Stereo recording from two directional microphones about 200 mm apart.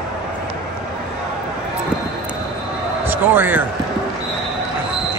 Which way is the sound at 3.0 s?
10° right (ahead or behind).